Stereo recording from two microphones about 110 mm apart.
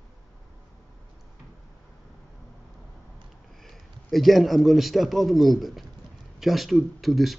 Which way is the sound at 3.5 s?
Centre (ahead or behind).